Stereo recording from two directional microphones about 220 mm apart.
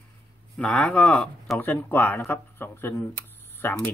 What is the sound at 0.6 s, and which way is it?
Speech, 5° left (ahead or behind).